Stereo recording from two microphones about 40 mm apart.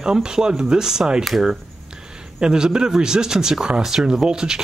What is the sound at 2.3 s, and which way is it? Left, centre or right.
Speech, centre.